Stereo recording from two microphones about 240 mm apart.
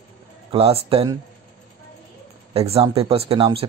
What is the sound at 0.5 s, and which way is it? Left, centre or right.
Speech, right.